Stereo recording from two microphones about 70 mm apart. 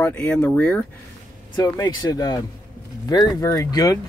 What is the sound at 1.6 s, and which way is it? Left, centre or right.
Speech, left.